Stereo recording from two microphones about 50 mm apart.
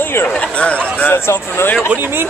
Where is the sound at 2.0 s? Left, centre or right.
Right.